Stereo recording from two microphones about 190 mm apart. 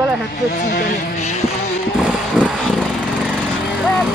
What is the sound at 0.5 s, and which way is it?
Music, 45° left (ahead or behind).